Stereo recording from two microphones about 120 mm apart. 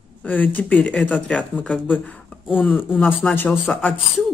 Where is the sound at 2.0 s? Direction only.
10° left (ahead or behind).